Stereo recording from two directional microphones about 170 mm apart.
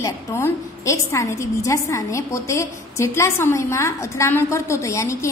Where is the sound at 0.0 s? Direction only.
15° left (ahead or behind).